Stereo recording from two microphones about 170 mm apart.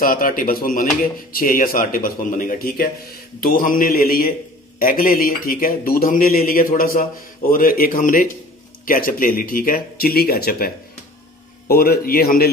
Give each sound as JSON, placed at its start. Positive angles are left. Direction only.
{"t": 0.0, "sound": "a man's voice", "side_deg": 55}